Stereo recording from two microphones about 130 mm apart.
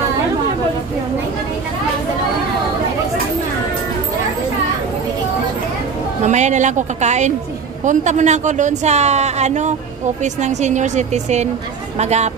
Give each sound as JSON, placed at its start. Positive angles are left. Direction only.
{"t": 6.2, "sound": "speech", "side_deg": -65}